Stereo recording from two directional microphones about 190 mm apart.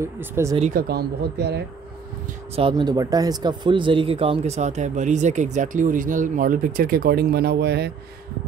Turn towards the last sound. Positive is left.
turn(degrees=-60)  # may be behind; listen again after turning